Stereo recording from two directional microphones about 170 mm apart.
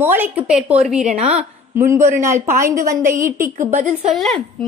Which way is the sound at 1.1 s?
40° right (ahead or behind).